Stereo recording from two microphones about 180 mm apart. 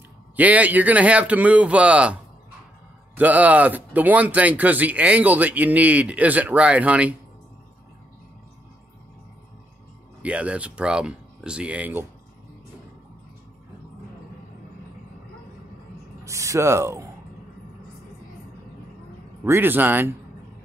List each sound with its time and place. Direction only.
0.4 s speech: 10° right (ahead or behind)
3.2 s speech: 10° right (ahead or behind)
10.2 s speech: 5° right (ahead or behind)
16.3 s speech: 15° right (ahead or behind)
19.4 s speech: 10° right (ahead or behind)